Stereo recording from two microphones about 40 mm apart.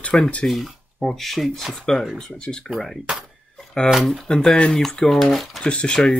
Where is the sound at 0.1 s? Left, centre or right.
Left.